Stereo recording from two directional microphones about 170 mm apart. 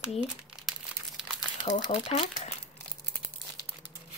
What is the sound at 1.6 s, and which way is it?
Speech, 40° left (ahead or behind).